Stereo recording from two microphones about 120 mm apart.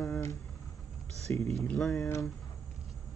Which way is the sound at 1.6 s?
10° left (ahead or behind).